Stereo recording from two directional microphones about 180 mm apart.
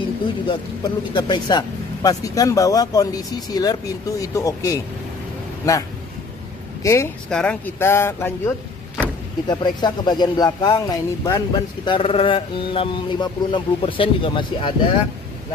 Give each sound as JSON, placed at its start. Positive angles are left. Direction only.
{"t": 0.5, "sound": "speech", "side_deg": 25}
{"t": 6.8, "sound": "speech", "side_deg": 15}
{"t": 9.5, "sound": "speech", "side_deg": 25}